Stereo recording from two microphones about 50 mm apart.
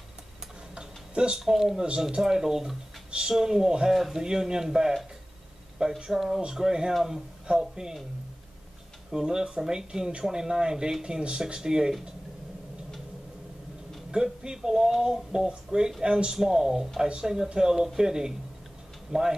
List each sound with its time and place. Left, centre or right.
0.7 s a sound: centre
1.4 s speech: centre
6.9 s speech: centre
7.4 s speech: centre
9.1 s speech: centre
14.1 s speech: centre